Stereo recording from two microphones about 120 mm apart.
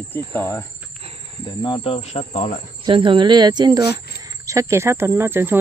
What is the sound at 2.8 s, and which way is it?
Speech, 45° right (ahead or behind).